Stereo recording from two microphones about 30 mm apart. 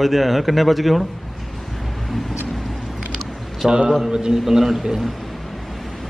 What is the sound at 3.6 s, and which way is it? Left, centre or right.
Speech, centre.